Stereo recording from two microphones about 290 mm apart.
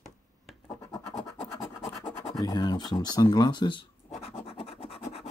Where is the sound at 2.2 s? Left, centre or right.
Centre.